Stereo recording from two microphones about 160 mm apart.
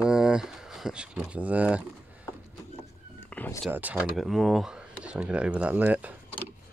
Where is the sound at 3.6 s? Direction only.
10° right (ahead or behind).